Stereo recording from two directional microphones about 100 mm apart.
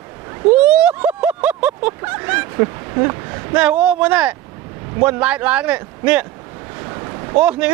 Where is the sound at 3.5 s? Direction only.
15° right (ahead or behind).